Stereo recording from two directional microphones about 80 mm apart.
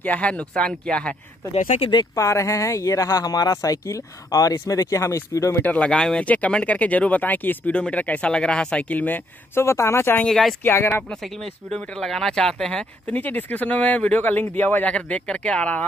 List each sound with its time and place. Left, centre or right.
0.0 s speech: centre
2.1 s speech: left
5.6 s speech: centre
9.6 s speech: left
10.2 s speech: centre
10.6 s speech: left
11.1 s speech: centre
13.0 s speech: left